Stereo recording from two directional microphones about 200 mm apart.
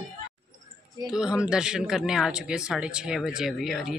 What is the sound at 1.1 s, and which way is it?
Speech, 5° right (ahead or behind).